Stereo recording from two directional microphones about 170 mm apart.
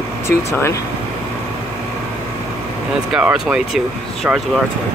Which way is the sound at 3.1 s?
5° right (ahead or behind).